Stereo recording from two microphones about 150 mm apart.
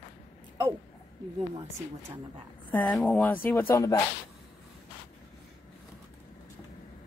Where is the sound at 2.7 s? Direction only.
5° left (ahead or behind).